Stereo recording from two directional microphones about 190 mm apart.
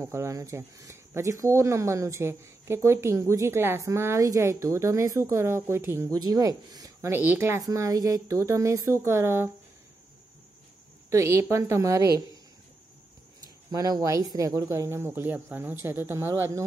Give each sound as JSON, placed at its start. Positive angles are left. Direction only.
{"t": 0.0, "sound": "speech", "side_deg": -15}
{"t": 11.1, "sound": "speech", "side_deg": -15}
{"t": 13.7, "sound": "speech", "side_deg": -20}